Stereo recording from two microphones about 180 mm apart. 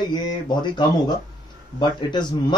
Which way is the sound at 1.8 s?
25° left (ahead or behind).